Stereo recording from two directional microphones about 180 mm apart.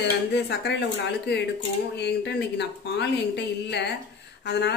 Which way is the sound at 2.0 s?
70° left (ahead or behind).